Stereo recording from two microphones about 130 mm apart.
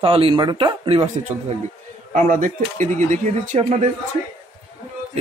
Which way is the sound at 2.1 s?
75° right (ahead or behind).